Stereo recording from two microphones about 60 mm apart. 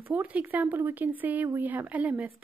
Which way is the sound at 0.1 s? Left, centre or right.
Right.